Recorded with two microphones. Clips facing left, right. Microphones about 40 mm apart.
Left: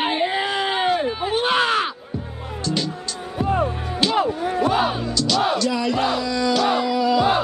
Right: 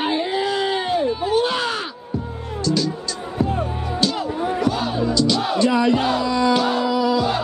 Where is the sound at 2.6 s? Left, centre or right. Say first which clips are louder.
Right 3 dB; left.